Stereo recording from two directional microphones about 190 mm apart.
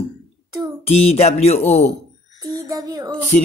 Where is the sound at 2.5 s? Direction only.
20° right (ahead or behind).